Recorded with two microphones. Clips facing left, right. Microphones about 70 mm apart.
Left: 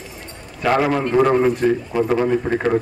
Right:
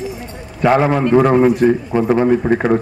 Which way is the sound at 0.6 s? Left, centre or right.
Centre.